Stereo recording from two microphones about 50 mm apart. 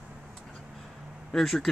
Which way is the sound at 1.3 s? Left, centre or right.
Centre.